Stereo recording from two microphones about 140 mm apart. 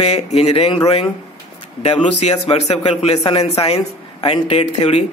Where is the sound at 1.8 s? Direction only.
50° left (ahead or behind).